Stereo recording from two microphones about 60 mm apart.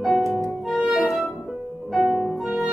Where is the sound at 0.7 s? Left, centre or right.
Centre.